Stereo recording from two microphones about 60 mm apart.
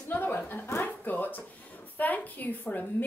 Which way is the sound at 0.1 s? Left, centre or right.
Left.